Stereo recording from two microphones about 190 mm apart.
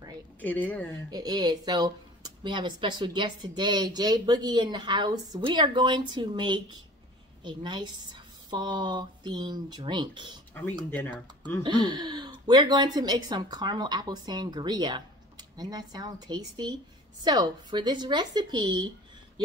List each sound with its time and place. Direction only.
0.4 s speech: 10° left (ahead or behind)
1.1 s speech: 20° right (ahead or behind)
10.9 s speech: 10° left (ahead or behind)
11.6 s speech: 25° right (ahead or behind)